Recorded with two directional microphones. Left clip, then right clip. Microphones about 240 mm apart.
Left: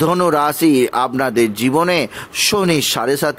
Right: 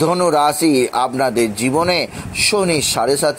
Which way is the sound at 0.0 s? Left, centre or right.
Left.